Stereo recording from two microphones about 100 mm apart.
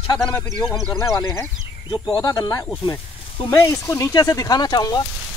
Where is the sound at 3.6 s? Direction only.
35° left (ahead or behind).